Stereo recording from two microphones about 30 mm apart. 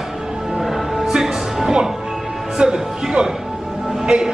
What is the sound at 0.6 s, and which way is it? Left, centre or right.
Music, centre.